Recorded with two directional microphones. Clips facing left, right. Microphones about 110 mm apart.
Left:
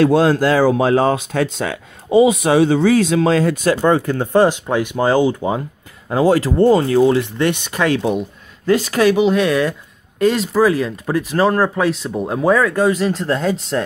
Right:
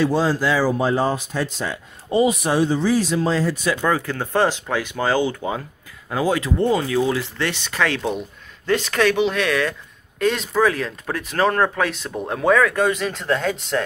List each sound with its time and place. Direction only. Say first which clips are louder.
0.0 s speech: left 6 dB; 60° left (ahead or behind)
2.4 s speech: left 6 dB; 90° left; by 3.5 s 60° left (ahead or behind)
3.8 s speech: left 6 dB; 25° left (ahead or behind)
7.3 s speech: left 5 dB; 20° left (ahead or behind)
10.2 s speech: left 5 dB; 5° left (ahead or behind)
13.2 s speech: left 3 dB; 30° left (ahead or behind)